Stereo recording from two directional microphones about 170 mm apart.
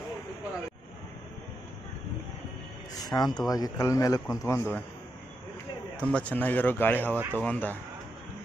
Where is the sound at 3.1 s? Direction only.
25° left (ahead or behind).